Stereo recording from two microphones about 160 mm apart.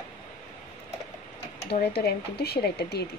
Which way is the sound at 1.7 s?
80° left.